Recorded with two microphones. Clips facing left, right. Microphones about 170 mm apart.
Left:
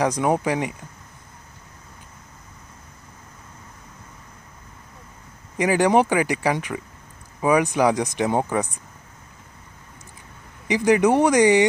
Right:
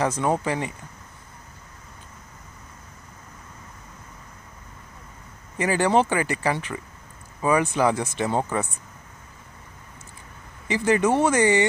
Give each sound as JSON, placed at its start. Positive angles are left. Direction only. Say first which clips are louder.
{"t": 0.0, "sound": "speech", "louder": "left 2 dB", "side_deg": 15}
{"t": 5.6, "sound": "speech", "louder": "left 3 dB", "side_deg": 15}
{"t": 10.7, "sound": "speech", "louder": "left 3 dB", "side_deg": 15}